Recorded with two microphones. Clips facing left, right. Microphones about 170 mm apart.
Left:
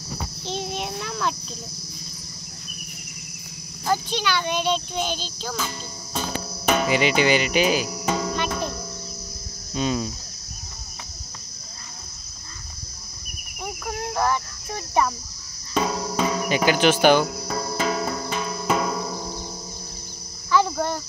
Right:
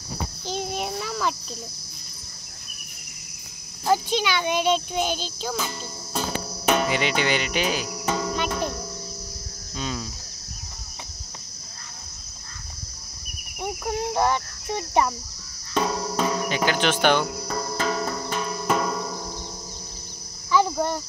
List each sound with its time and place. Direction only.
0.5 s a sound: 5° right (ahead or behind)
3.8 s a child's voice: 15° right (ahead or behind)
6.7 s cricket: 5° left (ahead or behind)
9.8 s cricket: 20° left (ahead or behind)
13.6 s cricket: 20° right (ahead or behind)
15.7 s cricket: centre (ahead or behind)
20.5 s a sound: 5° right (ahead or behind)